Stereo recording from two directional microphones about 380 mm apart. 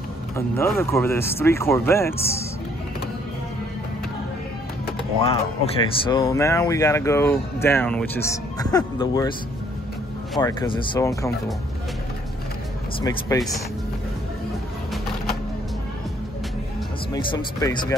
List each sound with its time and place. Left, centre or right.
0.6 s speech: centre
4.8 s music: centre
6.0 s speech: centre
10.3 s speech: centre
13.0 s speech: centre
17.1 s speech: centre